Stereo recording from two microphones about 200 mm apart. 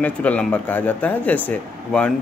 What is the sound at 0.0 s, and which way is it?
Speech, 5° left (ahead or behind).